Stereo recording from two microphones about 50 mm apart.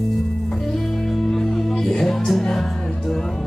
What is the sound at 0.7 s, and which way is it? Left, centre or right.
Music, centre.